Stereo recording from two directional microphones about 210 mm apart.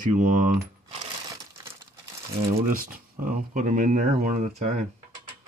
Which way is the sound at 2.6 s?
40° right (ahead or behind).